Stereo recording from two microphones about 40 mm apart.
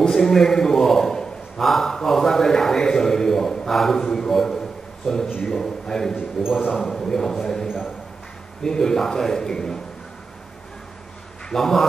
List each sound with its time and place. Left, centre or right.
0.1 s a man's voice: centre
6.4 s a man's voice: centre
6.7 s speech: centre
7.0 s a man's voice: centre
7.6 s a man's voice: centre
8.6 s a man's voice: centre
11.4 s a man's voice: centre